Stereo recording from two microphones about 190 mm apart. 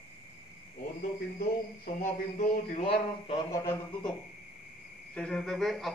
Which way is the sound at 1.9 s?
40° left (ahead or behind).